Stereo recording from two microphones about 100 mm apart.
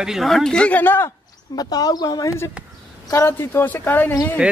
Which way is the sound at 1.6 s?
40° left (ahead or behind).